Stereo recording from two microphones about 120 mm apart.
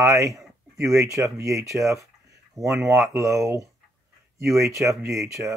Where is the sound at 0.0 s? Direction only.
25° right (ahead or behind).